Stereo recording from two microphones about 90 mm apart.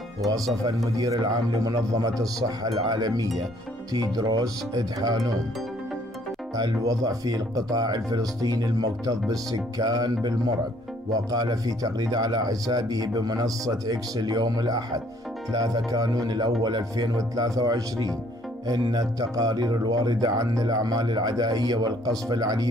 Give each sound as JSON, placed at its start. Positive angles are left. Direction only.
{"t": 0.7, "sound": "a man's voice", "side_deg": -40}
{"t": 6.5, "sound": "speech", "side_deg": -40}